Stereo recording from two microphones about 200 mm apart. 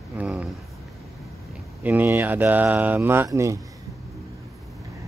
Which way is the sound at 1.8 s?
10° right (ahead or behind).